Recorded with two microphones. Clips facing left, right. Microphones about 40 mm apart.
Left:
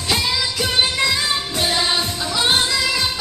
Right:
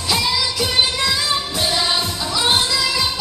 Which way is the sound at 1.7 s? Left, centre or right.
Left.